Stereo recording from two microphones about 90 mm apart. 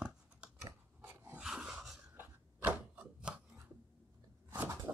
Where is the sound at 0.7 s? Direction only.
30° right (ahead or behind).